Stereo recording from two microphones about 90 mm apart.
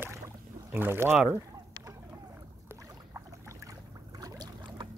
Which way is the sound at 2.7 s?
30° right (ahead or behind).